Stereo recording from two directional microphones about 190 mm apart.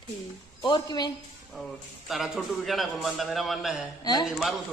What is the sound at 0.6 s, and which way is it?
Speech, 20° left (ahead or behind).